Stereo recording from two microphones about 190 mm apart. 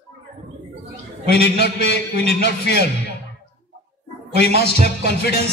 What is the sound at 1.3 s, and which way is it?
A man's voice, 60° left (ahead or behind).